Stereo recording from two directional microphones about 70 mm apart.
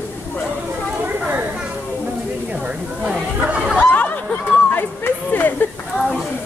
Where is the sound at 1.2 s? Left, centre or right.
Centre.